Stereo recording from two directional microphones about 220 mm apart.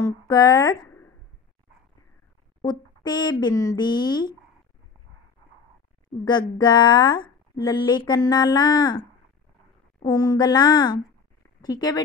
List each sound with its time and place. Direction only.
0.0 s speech: 15° left (ahead or behind)
2.6 s speech: 20° left (ahead or behind)
6.2 s speech: 20° left (ahead or behind)
10.0 s speech: 15° left (ahead or behind)